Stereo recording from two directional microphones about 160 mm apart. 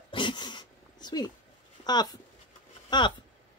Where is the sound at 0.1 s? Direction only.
30° left (ahead or behind).